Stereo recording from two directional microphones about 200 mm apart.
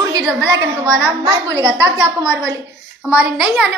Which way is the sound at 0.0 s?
15° right (ahead or behind).